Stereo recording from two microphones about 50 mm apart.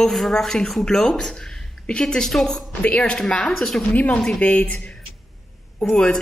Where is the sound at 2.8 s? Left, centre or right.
Left.